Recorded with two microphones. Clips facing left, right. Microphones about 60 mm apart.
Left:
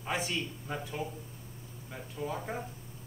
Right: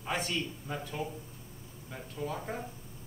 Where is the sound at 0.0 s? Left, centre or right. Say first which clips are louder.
Even; centre.